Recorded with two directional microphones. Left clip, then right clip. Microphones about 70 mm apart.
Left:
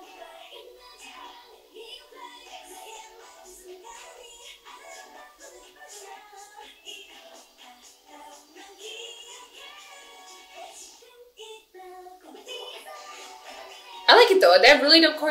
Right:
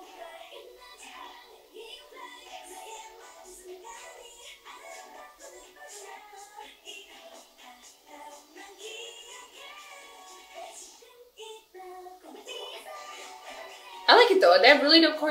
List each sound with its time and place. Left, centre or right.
0.2 s music: right
8.2 s music: right
12.3 s music: right
14.0 s a woman's voice: centre